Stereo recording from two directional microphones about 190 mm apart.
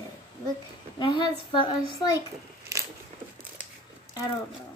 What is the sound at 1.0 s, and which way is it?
A child's voice, 25° left (ahead or behind).